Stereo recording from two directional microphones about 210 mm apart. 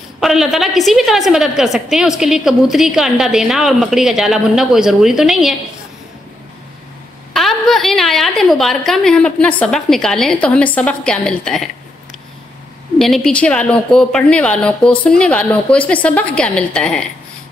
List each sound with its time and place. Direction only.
0.2 s a woman's voice: centre (ahead or behind)
7.3 s a woman's voice: centre (ahead or behind)
13.0 s a woman's voice: centre (ahead or behind)